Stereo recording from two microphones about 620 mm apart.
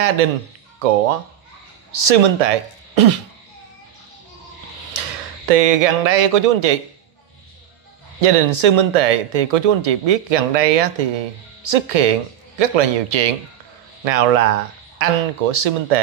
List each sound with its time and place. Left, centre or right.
0.7 s speech: right
4.9 s speech: right
8.2 s speech: right